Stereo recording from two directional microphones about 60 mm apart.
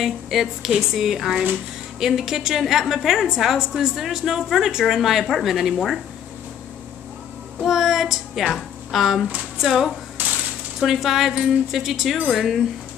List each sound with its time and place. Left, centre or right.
0.0 s a woman's voice: centre
7.6 s a woman's voice: centre
10.2 s coin: right
10.8 s a woman's voice: centre